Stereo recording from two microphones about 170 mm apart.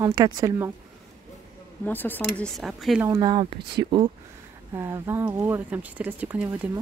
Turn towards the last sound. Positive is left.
turn(degrees=-10)  # may be behind; listen again after turning